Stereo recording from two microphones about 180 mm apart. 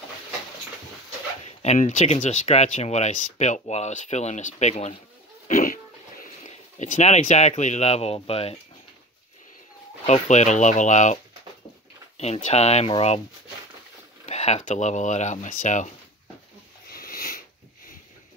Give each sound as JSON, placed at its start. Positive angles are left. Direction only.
{"t": 1.4, "sound": "speech", "side_deg": 40}
{"t": 5.5, "sound": "dog", "side_deg": 50}
{"t": 6.8, "sound": "speech", "side_deg": 40}
{"t": 10.0, "sound": "speech", "side_deg": 40}
{"t": 12.2, "sound": "speech", "side_deg": 40}
{"t": 14.2, "sound": "speech", "side_deg": 40}
{"t": 16.8, "sound": "a sound", "side_deg": 55}